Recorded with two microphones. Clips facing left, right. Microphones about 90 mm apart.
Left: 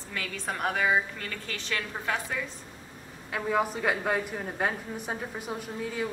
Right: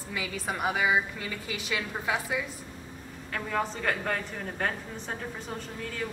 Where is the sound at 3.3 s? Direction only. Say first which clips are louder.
Left 3 dB; 10° left (ahead or behind).